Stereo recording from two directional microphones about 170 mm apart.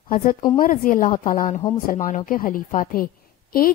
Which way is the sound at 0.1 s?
55° left (ahead or behind).